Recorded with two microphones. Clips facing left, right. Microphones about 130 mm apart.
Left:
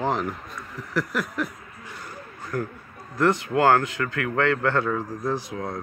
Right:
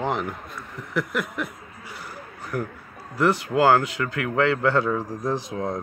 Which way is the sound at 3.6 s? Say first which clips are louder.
Right 1 dB; 10° right (ahead or behind).